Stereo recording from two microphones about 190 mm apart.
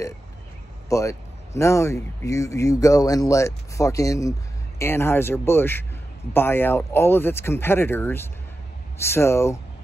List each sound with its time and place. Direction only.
0.8 s speech: 15° left (ahead or behind)